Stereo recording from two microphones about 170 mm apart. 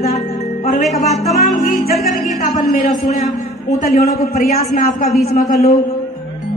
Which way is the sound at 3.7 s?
60° left (ahead or behind).